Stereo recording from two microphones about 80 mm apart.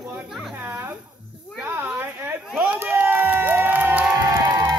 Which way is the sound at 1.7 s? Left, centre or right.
Right.